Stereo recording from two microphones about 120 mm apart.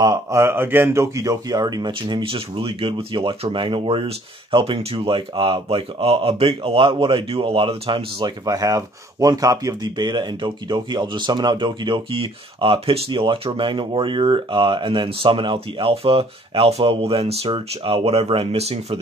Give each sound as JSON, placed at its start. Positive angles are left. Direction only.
{"t": 0.0, "sound": "speech", "side_deg": -30}